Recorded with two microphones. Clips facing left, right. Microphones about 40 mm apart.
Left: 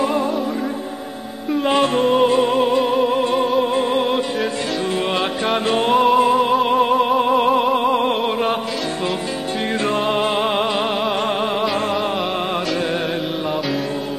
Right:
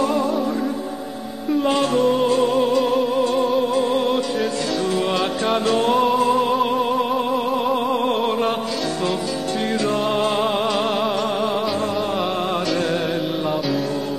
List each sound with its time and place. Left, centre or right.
0.0 s music: left
1.6 s music: left
5.7 s music: left
8.2 s music: centre
10.0 s music: left